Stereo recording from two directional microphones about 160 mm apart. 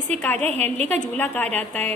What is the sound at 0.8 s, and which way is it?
A woman's voice, 10° left (ahead or behind).